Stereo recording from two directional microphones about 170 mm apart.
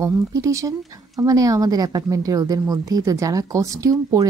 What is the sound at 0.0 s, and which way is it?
Speech, 20° right (ahead or behind).